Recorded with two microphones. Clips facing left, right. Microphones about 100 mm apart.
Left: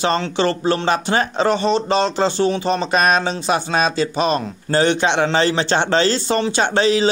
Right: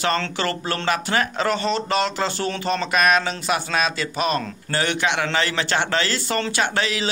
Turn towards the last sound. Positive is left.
turn(degrees=30)  # may be behind; listen again after turning